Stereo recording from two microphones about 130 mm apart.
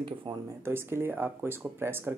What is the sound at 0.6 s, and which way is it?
Speech, 20° right (ahead or behind).